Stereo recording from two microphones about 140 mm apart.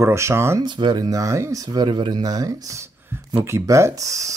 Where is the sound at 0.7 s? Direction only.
35° right (ahead or behind).